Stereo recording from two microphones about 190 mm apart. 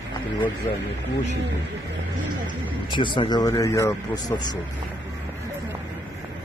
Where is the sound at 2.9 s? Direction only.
25° left (ahead or behind).